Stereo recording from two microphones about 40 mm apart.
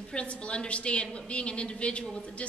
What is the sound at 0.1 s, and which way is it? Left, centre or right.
A woman's voice, left.